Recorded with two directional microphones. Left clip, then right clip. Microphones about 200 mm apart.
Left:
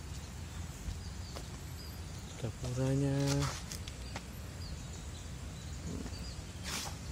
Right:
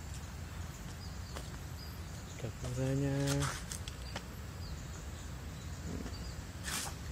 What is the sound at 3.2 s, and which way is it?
Speech, 5° left (ahead or behind).